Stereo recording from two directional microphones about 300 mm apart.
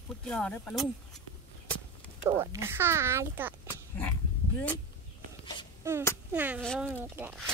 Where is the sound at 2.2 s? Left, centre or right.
Centre.